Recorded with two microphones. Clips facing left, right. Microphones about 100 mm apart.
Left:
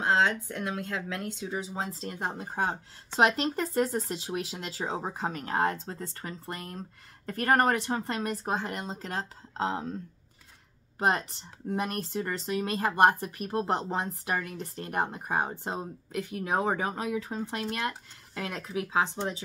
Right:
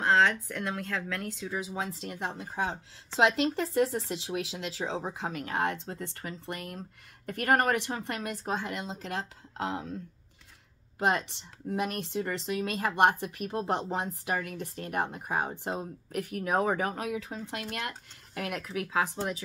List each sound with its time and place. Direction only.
0.0 s speech: 25° left (ahead or behind)
1.8 s speech: 35° left (ahead or behind)
11.7 s speech: 35° left (ahead or behind)